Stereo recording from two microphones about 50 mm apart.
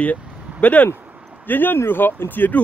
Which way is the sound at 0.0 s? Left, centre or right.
Left.